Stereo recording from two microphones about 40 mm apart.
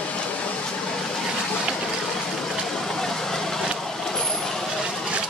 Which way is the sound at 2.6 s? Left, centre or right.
Centre.